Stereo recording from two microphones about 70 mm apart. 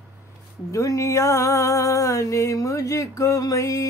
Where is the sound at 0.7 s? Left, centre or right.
Left.